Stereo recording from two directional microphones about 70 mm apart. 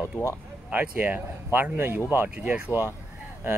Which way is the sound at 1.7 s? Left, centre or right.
Right.